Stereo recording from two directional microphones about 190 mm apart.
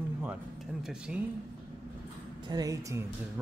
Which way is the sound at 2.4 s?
20° right (ahead or behind).